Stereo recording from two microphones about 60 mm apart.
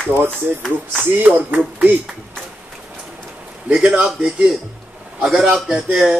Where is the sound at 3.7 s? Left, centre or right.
Centre.